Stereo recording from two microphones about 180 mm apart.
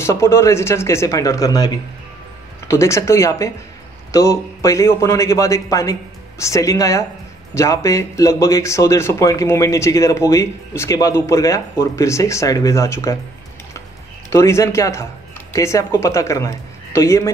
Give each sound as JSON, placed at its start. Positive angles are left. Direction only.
{"t": 0.0, "sound": "speech", "side_deg": 15}
{"t": 2.7, "sound": "speech", "side_deg": 15}
{"t": 14.3, "sound": "speech", "side_deg": 15}